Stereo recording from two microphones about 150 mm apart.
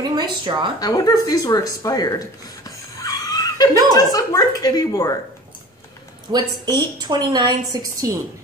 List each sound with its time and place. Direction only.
0.1 s a woman's voice: 30° right (ahead or behind)
0.7 s speech: 25° left (ahead or behind)
3.0 s a sound: 25° left (ahead or behind)
3.9 s speech: 25° left (ahead or behind)
6.3 s a woman's voice: 25° right (ahead or behind)